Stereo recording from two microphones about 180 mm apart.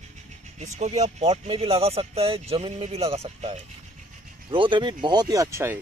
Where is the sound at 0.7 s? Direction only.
40° right (ahead or behind); by 5.7 s 15° right (ahead or behind).